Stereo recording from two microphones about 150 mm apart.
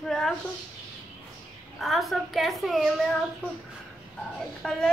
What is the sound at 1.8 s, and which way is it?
A woman's voice, centre (ahead or behind).